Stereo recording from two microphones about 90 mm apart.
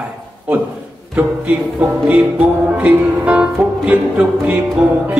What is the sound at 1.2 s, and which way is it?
A man's voice, 15° right (ahead or behind).